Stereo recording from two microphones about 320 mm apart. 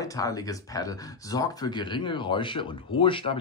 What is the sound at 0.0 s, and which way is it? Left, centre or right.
Speech, centre.